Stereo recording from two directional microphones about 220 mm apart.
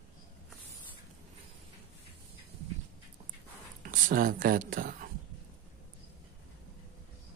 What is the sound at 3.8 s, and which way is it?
Speech, 40° right (ahead or behind).